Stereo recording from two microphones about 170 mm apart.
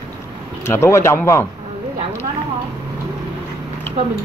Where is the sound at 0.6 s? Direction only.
15° left (ahead or behind).